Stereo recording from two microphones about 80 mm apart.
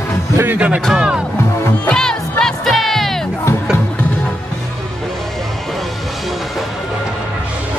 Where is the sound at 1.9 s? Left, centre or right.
Centre.